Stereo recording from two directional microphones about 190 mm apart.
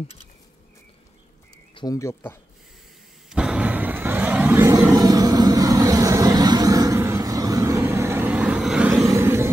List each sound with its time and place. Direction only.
1.8 s speech: 15° left (ahead or behind)
3.3 s vehicle: 5° right (ahead or behind)
9.0 s vehicle: 15° right (ahead or behind)